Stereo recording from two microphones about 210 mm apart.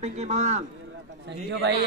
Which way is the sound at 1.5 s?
60° right (ahead or behind).